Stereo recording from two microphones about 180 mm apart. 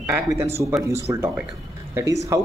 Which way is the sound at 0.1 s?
15° right (ahead or behind).